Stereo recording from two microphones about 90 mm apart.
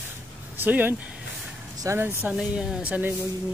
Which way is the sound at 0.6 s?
20° right (ahead or behind).